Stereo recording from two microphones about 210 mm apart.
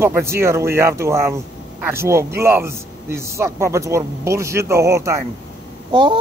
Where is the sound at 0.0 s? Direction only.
10° right (ahead or behind).